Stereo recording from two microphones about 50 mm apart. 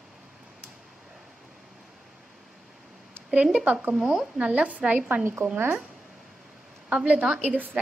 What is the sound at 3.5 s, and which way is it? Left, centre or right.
Speech, right.